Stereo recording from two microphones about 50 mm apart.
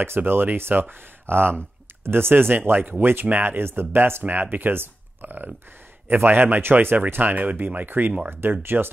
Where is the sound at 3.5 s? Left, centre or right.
Right.